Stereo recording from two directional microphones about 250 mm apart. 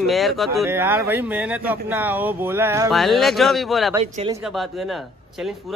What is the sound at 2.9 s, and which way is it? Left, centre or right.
A man's voice, centre.